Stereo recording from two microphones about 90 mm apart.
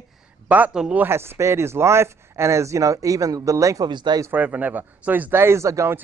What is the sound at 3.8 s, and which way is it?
Speech, 55° right (ahead or behind).